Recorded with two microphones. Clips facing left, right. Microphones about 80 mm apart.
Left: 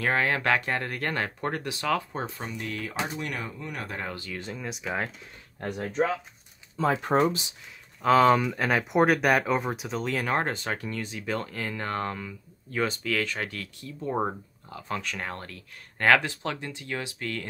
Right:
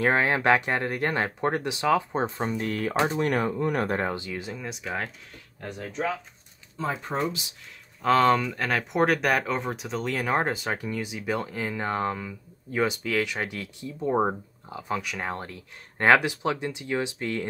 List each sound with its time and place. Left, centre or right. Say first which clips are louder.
0.0 s speech: right 3 dB; right
2.6 s speech: right 6 dB; right
4.1 s speech: right 5 dB; right
4.4 s speech: right 1 dB; centre
5.6 s speech: left 4 dB; left
8.0 s speech: left 1 dB; centre; by 17.5 s right